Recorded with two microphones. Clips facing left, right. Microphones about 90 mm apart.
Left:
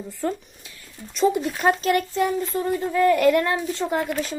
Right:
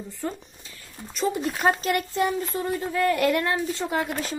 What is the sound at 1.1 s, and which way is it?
A woman's voice, centre (ahead or behind).